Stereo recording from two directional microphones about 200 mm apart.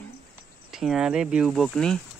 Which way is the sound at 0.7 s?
Centre (ahead or behind).